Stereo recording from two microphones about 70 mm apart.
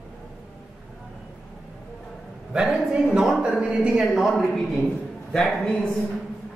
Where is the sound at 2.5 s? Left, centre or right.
Centre.